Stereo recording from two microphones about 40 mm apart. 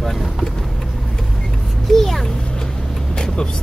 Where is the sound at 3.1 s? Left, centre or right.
Centre.